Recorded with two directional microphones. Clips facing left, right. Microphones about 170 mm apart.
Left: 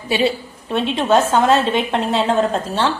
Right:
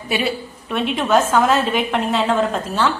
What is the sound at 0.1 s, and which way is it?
A woman's voice, 30° left (ahead or behind).